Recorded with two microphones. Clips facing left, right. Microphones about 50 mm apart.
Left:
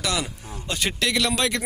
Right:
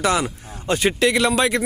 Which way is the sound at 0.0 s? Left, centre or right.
Right.